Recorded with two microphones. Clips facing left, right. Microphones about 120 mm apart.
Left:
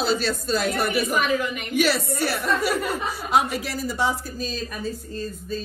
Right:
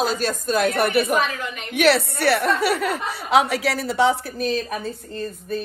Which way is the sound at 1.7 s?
65° right (ahead or behind).